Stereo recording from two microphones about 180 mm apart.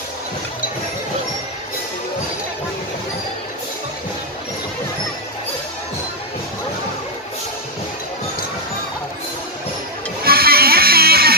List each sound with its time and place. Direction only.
10.2 s music: 55° right (ahead or behind)